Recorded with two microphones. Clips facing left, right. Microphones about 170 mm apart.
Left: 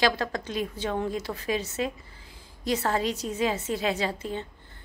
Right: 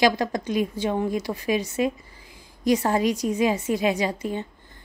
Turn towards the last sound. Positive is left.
turn(degrees=-15)  # may be behind; listen again after turning